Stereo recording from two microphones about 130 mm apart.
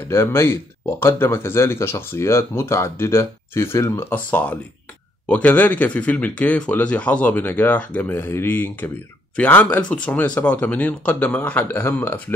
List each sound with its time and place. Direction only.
0.1 s speech: 20° left (ahead or behind)